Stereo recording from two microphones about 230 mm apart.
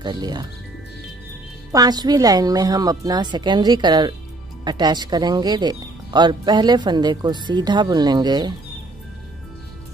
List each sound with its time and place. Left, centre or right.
0.0 s speech: centre
1.7 s speech: centre